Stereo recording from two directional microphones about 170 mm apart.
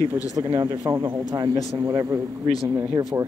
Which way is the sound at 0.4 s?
30° right (ahead or behind).